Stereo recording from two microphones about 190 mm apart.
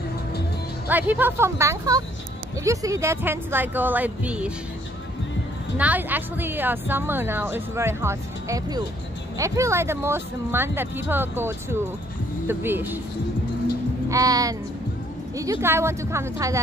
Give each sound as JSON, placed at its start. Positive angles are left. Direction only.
{"t": 0.8, "sound": "a woman's voice", "side_deg": -10}
{"t": 5.8, "sound": "a woman's voice", "side_deg": -10}
{"t": 14.0, "sound": "a woman's voice", "side_deg": -20}